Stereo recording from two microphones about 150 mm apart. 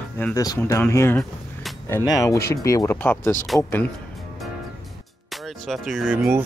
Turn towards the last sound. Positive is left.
turn(degrees=-5)  # may be behind; listen again after turning